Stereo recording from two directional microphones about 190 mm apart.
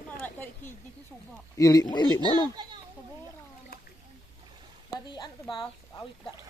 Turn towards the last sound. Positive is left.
turn(degrees=25)  # may be behind; listen again after turning